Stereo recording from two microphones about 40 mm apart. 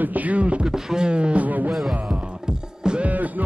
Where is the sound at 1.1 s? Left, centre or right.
Right.